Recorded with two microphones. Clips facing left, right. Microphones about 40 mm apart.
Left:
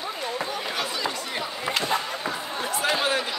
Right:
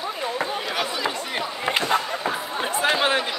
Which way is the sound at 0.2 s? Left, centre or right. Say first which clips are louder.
Right 4 dB; right.